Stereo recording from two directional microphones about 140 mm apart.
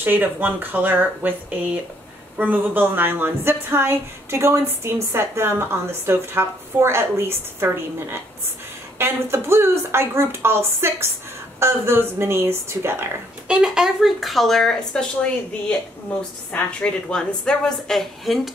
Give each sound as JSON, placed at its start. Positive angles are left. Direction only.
{"t": 0.0, "sound": "a woman's voice", "side_deg": -15}
{"t": 13.6, "sound": "a woman's voice", "side_deg": -5}